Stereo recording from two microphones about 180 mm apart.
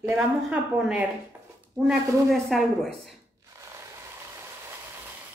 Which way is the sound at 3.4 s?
15° right (ahead or behind).